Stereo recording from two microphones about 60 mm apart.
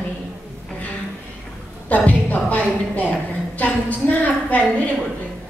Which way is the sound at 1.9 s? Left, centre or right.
Left.